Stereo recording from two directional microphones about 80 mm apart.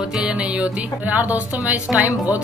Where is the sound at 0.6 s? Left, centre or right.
Centre.